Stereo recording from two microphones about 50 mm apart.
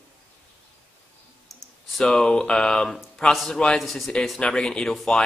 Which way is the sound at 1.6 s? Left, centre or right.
Centre.